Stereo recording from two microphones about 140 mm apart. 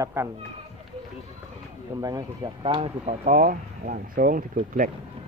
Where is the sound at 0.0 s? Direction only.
20° right (ahead or behind).